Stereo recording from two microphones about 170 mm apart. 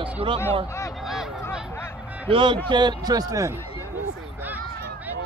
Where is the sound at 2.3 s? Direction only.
30° right (ahead or behind).